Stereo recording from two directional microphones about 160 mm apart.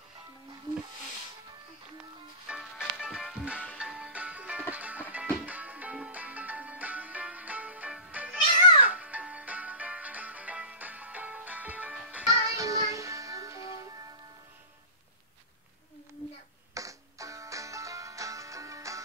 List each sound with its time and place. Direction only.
2.4 s music: 5° right (ahead or behind)
12.3 s music: 20° right (ahead or behind)
16.7 s music: 20° right (ahead or behind)